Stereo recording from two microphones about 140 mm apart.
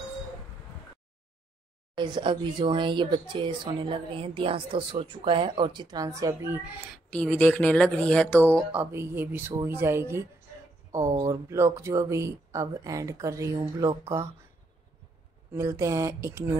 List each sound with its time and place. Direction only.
2.0 s speech: 35° right (ahead or behind); by 6.8 s 15° right (ahead or behind)
7.1 s speech: 10° left (ahead or behind)
8.7 s speech: 15° right (ahead or behind)
15.5 s speech: 20° right (ahead or behind)